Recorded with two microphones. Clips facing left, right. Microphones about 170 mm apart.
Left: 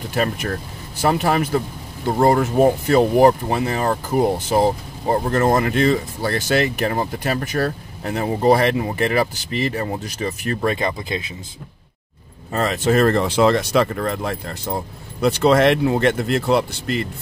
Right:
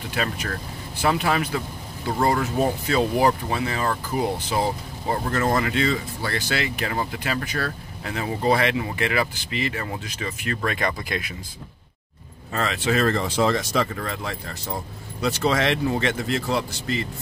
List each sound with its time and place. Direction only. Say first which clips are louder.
0.1 s speech: left 6 dB; 45° left (ahead or behind)
5.3 s speech: left 4 dB; 50° left (ahead or behind); by 11.3 s 25° left (ahead or behind)
12.5 s speech: left 5 dB; 45° left (ahead or behind); by 13.8 s 65° left (ahead or behind)
13.9 s speech: left 7 dB; 50° left (ahead or behind)